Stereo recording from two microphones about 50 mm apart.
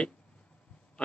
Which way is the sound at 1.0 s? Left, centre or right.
Centre.